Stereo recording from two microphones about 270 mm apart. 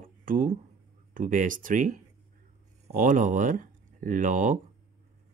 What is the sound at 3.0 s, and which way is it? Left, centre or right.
Speech, right.